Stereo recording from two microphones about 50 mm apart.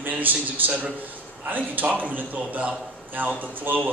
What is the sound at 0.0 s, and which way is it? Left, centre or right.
A man's voice, right.